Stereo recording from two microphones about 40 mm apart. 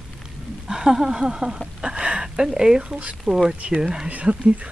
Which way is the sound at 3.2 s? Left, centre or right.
Centre.